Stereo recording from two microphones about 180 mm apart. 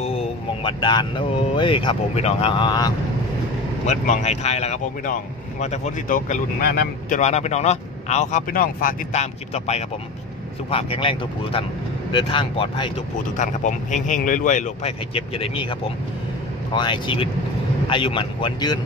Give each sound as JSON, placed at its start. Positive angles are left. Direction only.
{"t": 0.7, "sound": "speech", "side_deg": 25}
{"t": 3.8, "sound": "speech", "side_deg": 40}
{"t": 13.4, "sound": "speech", "side_deg": 40}
{"t": 16.7, "sound": "speech", "side_deg": 25}